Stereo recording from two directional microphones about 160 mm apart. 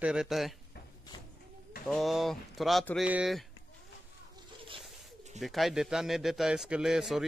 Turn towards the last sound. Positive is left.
turn(degrees=0)  # may be behind; listen again after turning